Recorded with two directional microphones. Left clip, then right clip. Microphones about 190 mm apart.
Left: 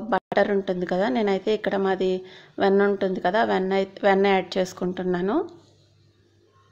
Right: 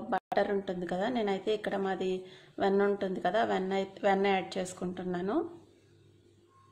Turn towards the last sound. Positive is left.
turn(degrees=25)  # may be behind; listen again after turning